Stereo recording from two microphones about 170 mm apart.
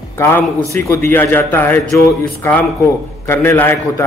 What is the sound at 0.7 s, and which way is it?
A man's voice, 15° left (ahead or behind).